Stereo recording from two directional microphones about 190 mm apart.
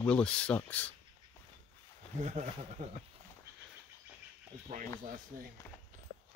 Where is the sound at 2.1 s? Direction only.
40° right (ahead or behind).